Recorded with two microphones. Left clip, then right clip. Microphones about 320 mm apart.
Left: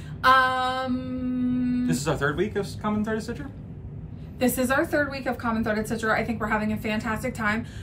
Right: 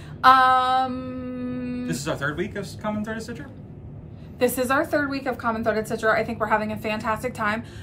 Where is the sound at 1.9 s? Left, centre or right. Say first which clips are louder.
Right 1 dB; centre.